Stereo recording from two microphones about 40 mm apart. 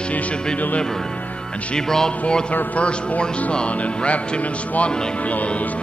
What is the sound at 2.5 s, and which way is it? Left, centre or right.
Speech, left.